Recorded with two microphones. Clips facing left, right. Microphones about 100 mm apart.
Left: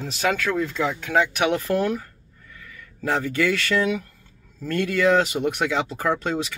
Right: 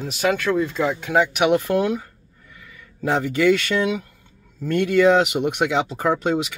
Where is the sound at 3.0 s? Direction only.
15° right (ahead or behind).